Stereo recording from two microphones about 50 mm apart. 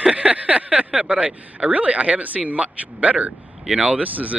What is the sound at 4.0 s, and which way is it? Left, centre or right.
Speech, right.